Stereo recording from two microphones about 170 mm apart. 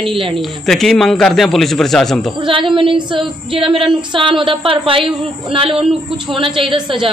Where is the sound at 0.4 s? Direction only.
Centre (ahead or behind).